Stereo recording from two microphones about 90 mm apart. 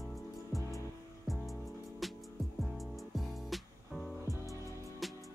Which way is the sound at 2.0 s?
Centre (ahead or behind).